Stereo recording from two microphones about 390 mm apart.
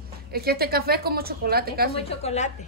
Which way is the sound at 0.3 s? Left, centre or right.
Right.